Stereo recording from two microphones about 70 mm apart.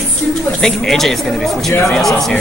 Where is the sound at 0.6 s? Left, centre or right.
Centre.